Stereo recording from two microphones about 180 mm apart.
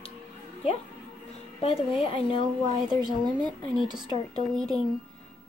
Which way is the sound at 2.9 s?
25° right (ahead or behind).